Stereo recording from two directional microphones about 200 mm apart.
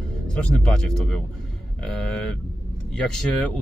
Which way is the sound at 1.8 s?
Centre (ahead or behind).